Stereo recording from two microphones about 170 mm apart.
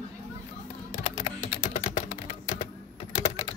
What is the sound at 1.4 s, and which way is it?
Typing, 30° left (ahead or behind).